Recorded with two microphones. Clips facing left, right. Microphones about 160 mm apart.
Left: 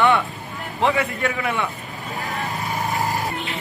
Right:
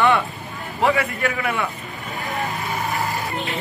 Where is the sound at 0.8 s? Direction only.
20° left (ahead or behind).